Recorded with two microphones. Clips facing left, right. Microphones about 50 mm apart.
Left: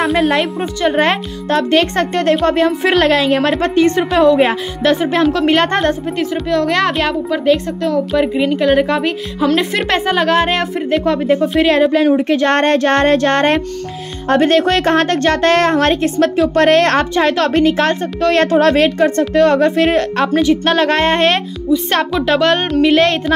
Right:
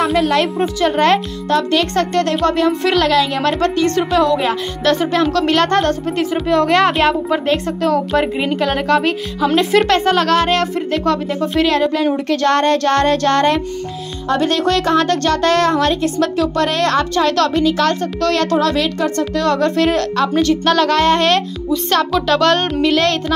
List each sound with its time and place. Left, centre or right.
0.9 s a woman's voice: left
1.5 s a woman's voice: left
6.5 s a woman's voice: centre
12.4 s a woman's voice: left